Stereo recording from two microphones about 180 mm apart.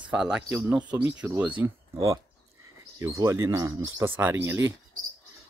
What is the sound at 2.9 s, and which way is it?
Speech, 20° right (ahead or behind).